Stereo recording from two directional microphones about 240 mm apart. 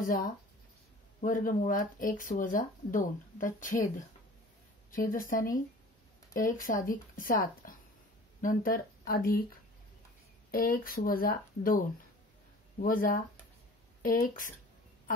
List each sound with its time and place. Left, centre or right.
0.0 s speech: left
4.9 s speech: left
10.5 s speech: left